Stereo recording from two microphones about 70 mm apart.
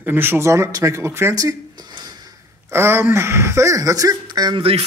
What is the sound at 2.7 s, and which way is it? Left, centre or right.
Speech, right.